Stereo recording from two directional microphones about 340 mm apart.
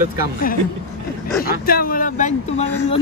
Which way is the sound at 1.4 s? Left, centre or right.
Left.